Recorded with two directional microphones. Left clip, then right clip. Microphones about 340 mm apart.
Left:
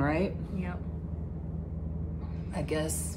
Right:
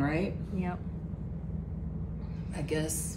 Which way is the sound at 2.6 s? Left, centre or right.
Centre.